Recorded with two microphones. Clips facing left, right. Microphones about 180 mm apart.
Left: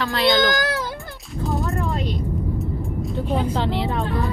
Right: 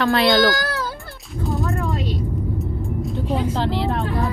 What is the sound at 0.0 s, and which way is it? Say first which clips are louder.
Speech: right 3 dB; 60° right (ahead or behind).